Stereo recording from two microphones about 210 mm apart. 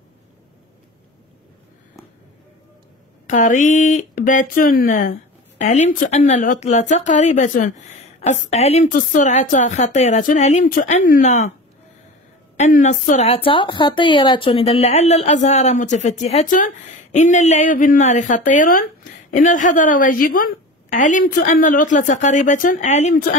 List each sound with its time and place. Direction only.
3.3 s a woman's voice: 35° left (ahead or behind)
12.5 s a woman's voice: 35° left (ahead or behind)